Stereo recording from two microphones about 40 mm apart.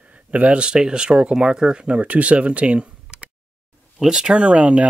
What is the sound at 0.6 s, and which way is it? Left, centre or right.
Speech, right.